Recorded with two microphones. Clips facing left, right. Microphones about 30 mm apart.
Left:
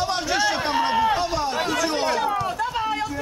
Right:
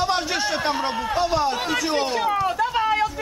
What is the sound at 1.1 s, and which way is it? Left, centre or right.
Speech, centre.